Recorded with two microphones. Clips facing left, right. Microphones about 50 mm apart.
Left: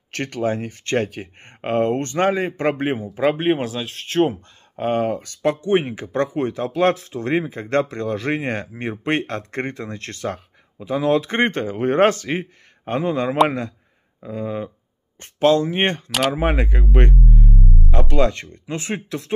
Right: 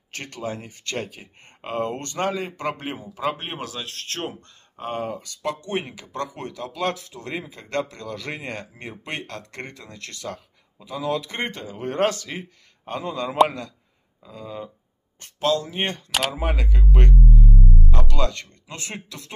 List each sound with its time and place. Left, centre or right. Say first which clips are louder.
0.1 s speech: left 9 dB; left
4.7 s speech: left 8 dB; left
5.4 s speech: left 9 dB; left